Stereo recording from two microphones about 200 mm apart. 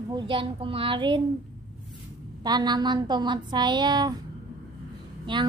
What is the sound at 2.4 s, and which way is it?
A woman's voice, 20° right (ahead or behind).